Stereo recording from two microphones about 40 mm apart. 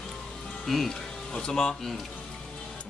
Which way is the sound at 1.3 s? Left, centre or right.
Centre.